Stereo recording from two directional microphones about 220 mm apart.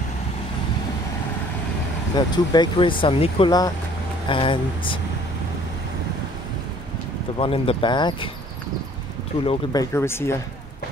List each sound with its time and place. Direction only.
2.1 s speech: 20° left (ahead or behind)
7.3 s speech: 25° left (ahead or behind)
9.4 s speech: 20° left (ahead or behind)